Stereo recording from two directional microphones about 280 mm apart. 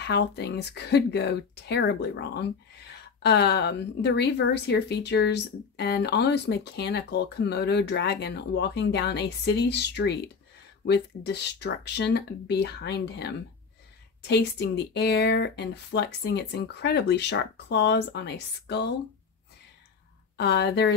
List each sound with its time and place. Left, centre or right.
0.0 s a woman's voice: left
20.3 s a woman's voice: left